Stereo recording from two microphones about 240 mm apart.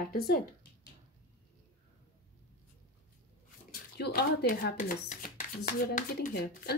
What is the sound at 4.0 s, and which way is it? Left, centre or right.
A woman's voice, left.